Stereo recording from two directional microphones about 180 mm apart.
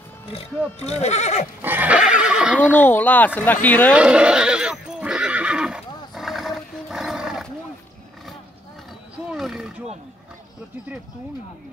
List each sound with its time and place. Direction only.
0.7 s speech: 35° left (ahead or behind)
1.6 s neigh: 10° right (ahead or behind)
2.7 s speech: 10° left (ahead or behind)
3.9 s neigh: 5° right (ahead or behind)
6.1 s roaring cats: centre (ahead or behind)
9.3 s a sound: centre (ahead or behind)